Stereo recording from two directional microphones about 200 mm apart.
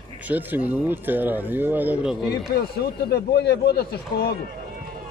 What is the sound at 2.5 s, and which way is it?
Speech, 50° left (ahead or behind).